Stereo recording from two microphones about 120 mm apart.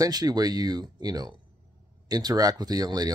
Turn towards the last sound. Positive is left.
turn(degrees=-30)  # may be behind; listen again after turning